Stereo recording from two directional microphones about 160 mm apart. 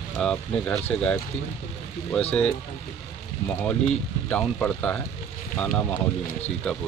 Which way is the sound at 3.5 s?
10° left (ahead or behind).